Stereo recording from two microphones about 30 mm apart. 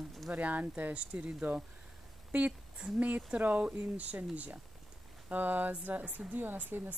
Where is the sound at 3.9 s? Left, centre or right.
Right.